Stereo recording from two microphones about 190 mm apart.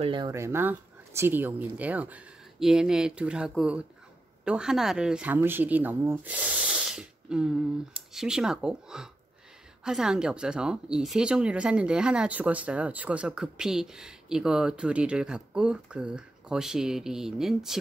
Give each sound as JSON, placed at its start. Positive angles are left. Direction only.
{"t": 0.0, "sound": "speech", "side_deg": -25}
{"t": 0.3, "sound": "speech", "side_deg": -15}